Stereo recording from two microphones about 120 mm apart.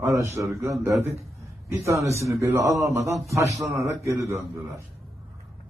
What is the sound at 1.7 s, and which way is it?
A man's voice, 25° right (ahead or behind).